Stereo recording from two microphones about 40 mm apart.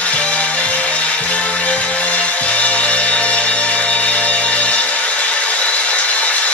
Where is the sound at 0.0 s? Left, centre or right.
Left.